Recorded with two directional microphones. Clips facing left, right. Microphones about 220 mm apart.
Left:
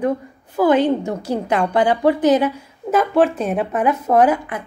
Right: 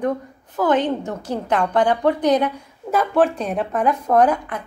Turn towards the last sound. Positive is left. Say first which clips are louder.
# left 2 dB
turn(degrees=5)  # may be behind; listen again after turning